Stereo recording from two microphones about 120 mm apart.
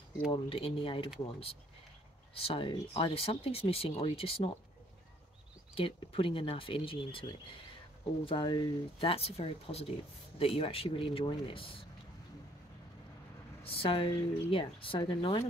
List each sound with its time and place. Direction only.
0.3 s speech: 50° left (ahead or behind)
2.3 s speech: 50° left (ahead or behind)
5.8 s speech: 50° left (ahead or behind)
9.1 s speech: 55° left (ahead or behind)
13.7 s speech: 50° left (ahead or behind)